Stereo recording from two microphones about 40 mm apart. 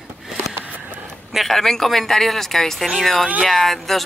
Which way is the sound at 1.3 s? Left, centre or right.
Centre.